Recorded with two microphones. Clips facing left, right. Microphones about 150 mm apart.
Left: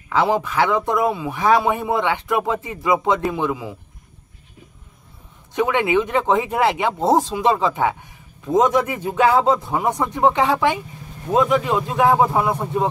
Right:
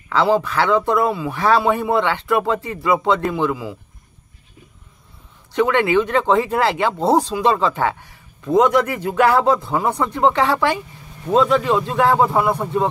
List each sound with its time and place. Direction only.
0.1 s speech: 15° left (ahead or behind)
5.5 s speech: 15° left (ahead or behind)